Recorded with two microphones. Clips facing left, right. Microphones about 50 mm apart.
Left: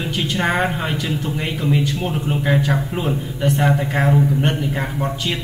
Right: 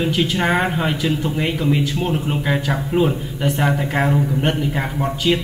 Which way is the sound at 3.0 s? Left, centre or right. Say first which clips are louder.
Right 1 dB; centre.